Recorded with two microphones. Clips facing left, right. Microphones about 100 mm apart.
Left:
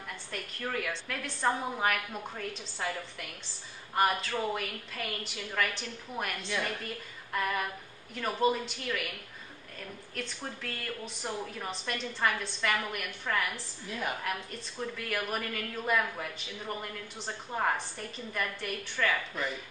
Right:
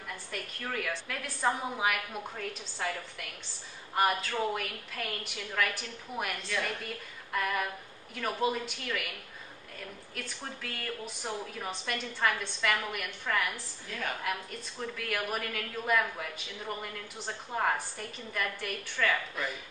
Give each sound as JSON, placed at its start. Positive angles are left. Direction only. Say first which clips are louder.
{"t": 0.3, "sound": "a woman's voice", "louder": "left 2 dB", "side_deg": 0}
{"t": 10.2, "sound": "a woman's voice", "louder": "left 2 dB", "side_deg": -5}
{"t": 14.2, "sound": "a woman's voice", "louder": "right 1 dB", "side_deg": 0}